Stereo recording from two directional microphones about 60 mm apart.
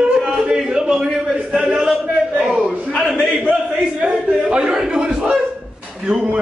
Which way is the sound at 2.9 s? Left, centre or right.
Centre.